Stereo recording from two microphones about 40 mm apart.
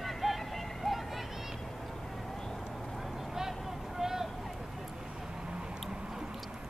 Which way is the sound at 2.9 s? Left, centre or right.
Centre.